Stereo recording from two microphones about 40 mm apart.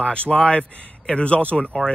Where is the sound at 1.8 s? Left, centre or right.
Right.